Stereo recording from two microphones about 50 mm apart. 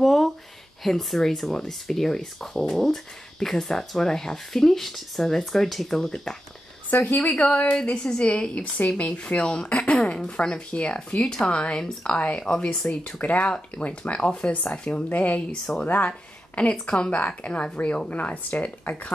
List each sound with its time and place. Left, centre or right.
0.0 s a sound: centre
0.8 s speech: centre
6.9 s a woman's voice: left
7.2 s a woman's voice: left